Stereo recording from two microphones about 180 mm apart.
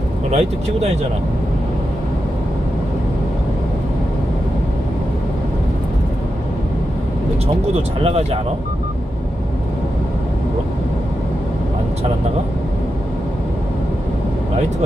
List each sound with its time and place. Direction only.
0.3 s speech: 35° right (ahead or behind)
8.0 s speech: 35° right (ahead or behind)